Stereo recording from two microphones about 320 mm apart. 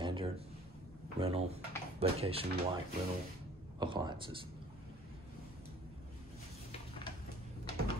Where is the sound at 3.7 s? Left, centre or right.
Centre.